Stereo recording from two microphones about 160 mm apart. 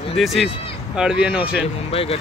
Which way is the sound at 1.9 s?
35° left (ahead or behind).